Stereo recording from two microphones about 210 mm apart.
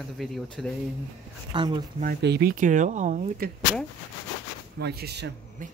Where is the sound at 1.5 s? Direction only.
20° right (ahead or behind).